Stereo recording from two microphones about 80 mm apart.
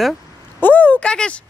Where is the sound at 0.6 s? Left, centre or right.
Left.